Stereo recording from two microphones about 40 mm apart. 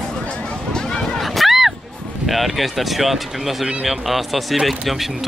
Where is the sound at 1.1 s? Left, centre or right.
Centre.